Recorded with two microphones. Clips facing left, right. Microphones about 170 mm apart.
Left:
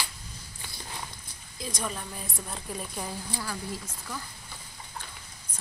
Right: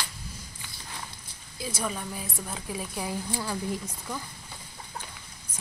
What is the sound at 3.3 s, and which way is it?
Speech, 20° right (ahead or behind).